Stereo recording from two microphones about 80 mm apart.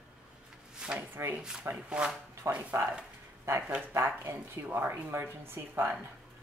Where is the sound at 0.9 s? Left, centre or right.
Right.